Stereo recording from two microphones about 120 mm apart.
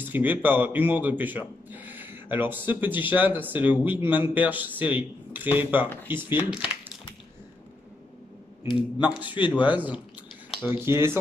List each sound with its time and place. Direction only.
0.0 s a man's voice: 15° right (ahead or behind)
8.6 s speech: 40° left (ahead or behind)
9.6 s a man's voice: 15° right (ahead or behind)